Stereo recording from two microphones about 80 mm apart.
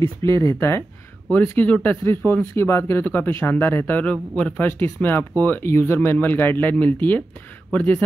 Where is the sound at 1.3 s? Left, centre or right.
Left.